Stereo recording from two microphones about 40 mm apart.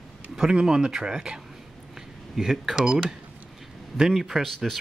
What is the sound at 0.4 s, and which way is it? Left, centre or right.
Speech, centre.